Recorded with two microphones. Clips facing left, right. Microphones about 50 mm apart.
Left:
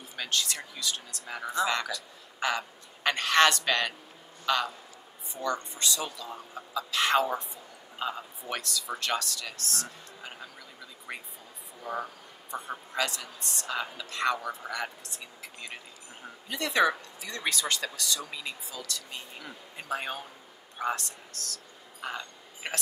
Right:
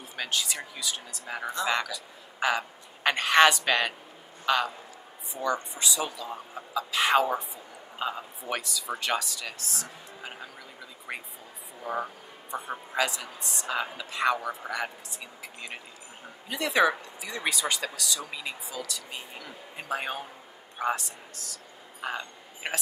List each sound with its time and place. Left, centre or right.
0.1 s a woman's voice: centre
11.1 s a sound: centre
11.8 s speech: centre